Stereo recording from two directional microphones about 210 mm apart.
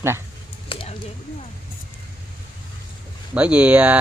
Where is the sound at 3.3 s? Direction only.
5° right (ahead or behind).